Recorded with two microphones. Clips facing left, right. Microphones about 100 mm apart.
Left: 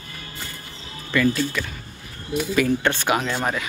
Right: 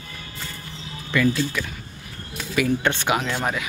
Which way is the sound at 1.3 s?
20° right (ahead or behind).